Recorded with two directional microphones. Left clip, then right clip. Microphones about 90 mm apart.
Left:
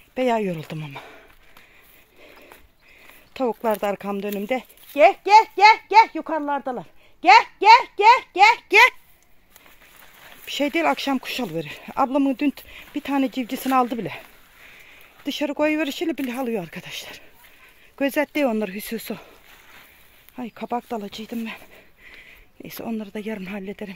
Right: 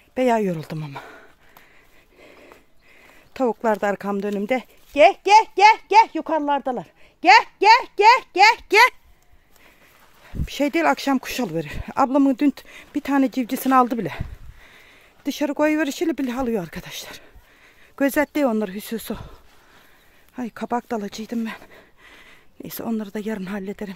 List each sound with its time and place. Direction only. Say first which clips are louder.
0.1 s speech: right 2 dB; 45° right (ahead or behind)
2.1 s a sound: right 1 dB; 30° right (ahead or behind)
3.3 s speech: right 2 dB; 45° right (ahead or behind)
5.0 s a child's voice: even; 70° right (ahead or behind)
8.6 s speech: even; 35° right (ahead or behind)
10.4 s speech: right 1 dB; 40° right (ahead or behind); by 14.2 s 55° right (ahead or behind)
15.2 s speech: right 1 dB; 50° right (ahead or behind)
17.9 s speech: right 2 dB; 60° right (ahead or behind)
18.3 s speech: right 1 dB; 35° right (ahead or behind)
20.3 s speech: right 2 dB; 55° right (ahead or behind)